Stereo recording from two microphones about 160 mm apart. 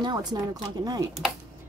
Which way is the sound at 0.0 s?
25° right (ahead or behind).